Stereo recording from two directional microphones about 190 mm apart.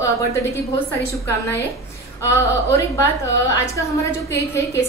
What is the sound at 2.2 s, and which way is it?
Speech, 15° left (ahead or behind).